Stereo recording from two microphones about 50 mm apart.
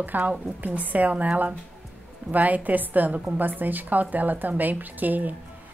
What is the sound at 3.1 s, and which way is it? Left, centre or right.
Speech, right.